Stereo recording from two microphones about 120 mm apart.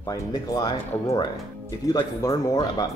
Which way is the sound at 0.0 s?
30° left (ahead or behind).